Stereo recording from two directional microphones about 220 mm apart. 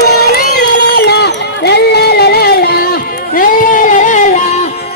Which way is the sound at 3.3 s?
40° left (ahead or behind).